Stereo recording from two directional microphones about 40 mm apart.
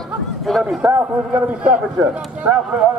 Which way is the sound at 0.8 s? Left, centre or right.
Right.